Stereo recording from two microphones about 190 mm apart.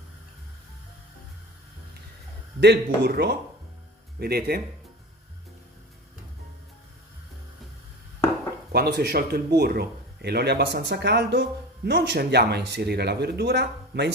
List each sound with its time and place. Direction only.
2.6 s speech: 60° right (ahead or behind)
8.7 s speech: 55° right (ahead or behind)